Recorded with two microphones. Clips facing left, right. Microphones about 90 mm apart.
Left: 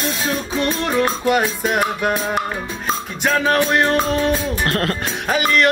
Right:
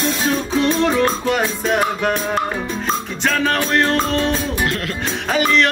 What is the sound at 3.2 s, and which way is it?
Music, 15° left (ahead or behind).